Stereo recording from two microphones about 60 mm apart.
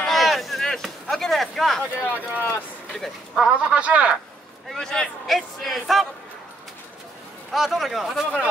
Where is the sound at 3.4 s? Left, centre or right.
Centre.